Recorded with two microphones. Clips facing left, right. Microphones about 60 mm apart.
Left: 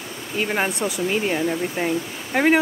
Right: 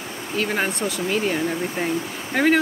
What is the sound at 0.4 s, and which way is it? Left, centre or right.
Speech, centre.